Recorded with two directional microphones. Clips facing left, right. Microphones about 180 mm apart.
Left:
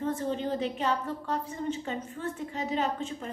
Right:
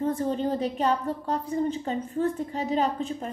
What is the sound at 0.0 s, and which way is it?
A woman's voice, 35° right (ahead or behind).